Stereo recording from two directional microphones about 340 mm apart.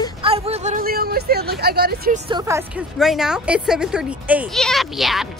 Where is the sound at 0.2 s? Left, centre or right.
Centre.